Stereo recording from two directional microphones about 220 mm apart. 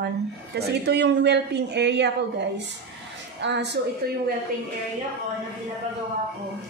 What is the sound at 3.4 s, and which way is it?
Speech, 50° right (ahead or behind).